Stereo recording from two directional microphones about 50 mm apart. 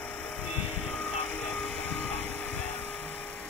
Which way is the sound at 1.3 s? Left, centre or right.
Left.